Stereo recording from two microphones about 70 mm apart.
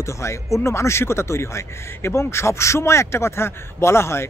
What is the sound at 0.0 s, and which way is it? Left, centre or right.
Speech, left.